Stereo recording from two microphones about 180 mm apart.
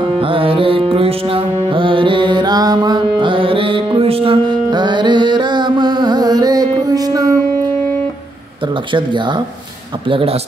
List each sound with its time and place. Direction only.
0.0 s music: 30° right (ahead or behind)
6.9 s a sound: 20° right (ahead or behind)
8.9 s a man's voice: 25° right (ahead or behind)